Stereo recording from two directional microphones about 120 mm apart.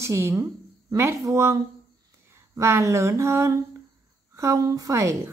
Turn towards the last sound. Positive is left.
turn(degrees=-25)  # may be behind; listen again after turning